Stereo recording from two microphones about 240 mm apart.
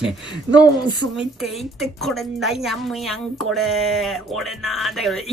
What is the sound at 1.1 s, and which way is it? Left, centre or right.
A woman's voice, centre.